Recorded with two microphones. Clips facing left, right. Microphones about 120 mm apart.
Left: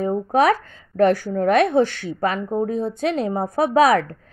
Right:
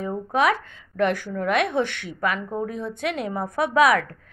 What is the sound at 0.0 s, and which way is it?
A woman's voice, 40° left (ahead or behind).